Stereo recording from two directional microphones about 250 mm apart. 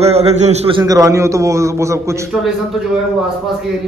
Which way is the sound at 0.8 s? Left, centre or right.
Centre.